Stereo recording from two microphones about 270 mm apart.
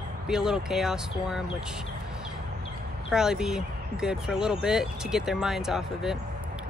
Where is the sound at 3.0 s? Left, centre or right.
Centre.